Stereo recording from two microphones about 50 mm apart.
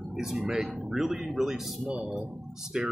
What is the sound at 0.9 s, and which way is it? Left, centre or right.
Speech, centre.